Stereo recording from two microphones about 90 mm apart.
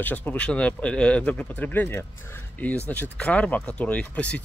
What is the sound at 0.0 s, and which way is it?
Speech, 20° left (ahead or behind).